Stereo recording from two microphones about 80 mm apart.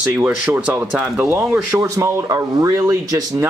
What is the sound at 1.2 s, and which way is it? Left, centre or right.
Speech, right.